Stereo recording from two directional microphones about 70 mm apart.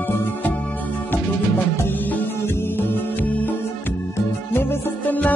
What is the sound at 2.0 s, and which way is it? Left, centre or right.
Music, left.